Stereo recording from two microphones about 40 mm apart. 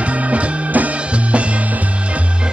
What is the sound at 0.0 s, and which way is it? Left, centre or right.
Music, right.